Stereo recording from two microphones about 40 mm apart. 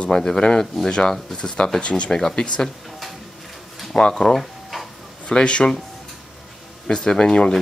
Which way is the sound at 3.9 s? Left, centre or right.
Centre.